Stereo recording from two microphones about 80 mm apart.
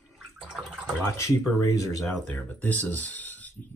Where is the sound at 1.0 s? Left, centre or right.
Left.